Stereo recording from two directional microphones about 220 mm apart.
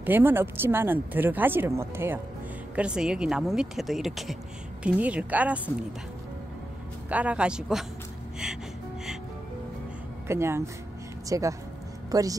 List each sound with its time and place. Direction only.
0.0 s speech: 10° right (ahead or behind)
7.1 s speech: 5° right (ahead or behind)
10.2 s speech: 10° right (ahead or behind)